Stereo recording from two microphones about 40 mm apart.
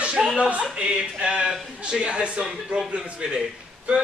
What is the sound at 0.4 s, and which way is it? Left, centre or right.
Speech, right.